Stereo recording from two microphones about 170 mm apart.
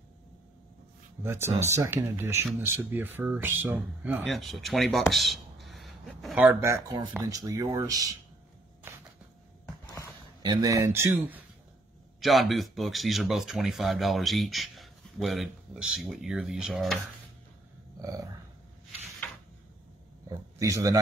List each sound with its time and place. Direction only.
1.2 s speech: 15° right (ahead or behind)
4.2 s speech: centre (ahead or behind); by 8.2 s 20° right (ahead or behind)
10.4 s speech: 25° right (ahead or behind)
12.2 s speech: centre (ahead or behind)
18.0 s speech: 20° right (ahead or behind)
20.2 s speech: 20° right (ahead or behind)